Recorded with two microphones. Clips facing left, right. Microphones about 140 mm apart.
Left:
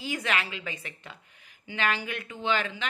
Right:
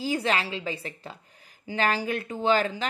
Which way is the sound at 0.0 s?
35° right (ahead or behind).